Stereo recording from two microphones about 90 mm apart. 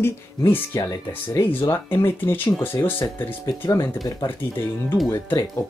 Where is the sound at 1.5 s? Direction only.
25° left (ahead or behind).